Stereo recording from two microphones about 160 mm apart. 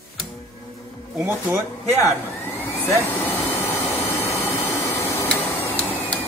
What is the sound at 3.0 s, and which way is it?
Speech, 20° left (ahead or behind).